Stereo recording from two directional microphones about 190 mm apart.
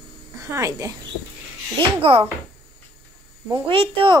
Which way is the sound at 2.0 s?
30° right (ahead or behind).